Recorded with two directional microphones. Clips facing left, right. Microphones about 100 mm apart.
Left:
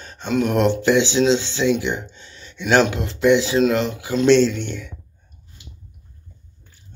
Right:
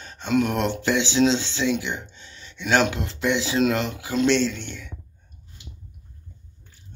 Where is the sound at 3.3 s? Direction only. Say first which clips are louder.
Left 3 dB; 25° left (ahead or behind).